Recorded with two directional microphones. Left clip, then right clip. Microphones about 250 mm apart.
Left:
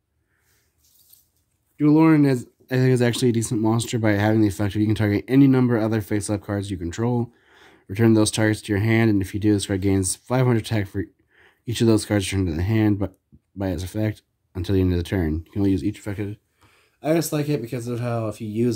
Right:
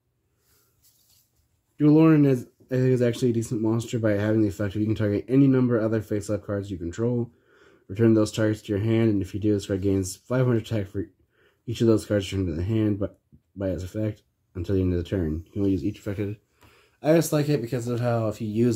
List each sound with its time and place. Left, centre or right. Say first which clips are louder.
1.8 s speech: left 2 dB; centre
16.7 s speech: right 1 dB; centre